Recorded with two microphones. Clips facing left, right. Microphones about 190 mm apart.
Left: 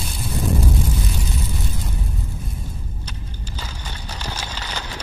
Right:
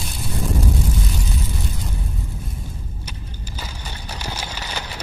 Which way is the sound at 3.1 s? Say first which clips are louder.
Even; 10° right (ahead or behind).